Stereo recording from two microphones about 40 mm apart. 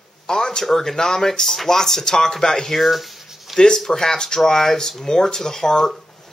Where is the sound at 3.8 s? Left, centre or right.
Centre.